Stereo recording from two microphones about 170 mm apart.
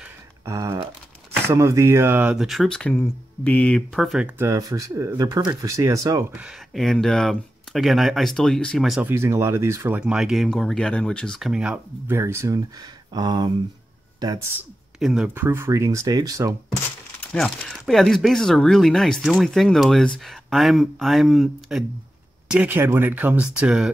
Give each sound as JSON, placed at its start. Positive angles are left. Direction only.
{"t": 0.5, "sound": "speech", "side_deg": -15}
{"t": 4.4, "sound": "speech", "side_deg": -20}
{"t": 9.1, "sound": "speech", "side_deg": -15}
{"t": 15.0, "sound": "speech", "side_deg": -5}
{"t": 17.3, "sound": "speech", "side_deg": 5}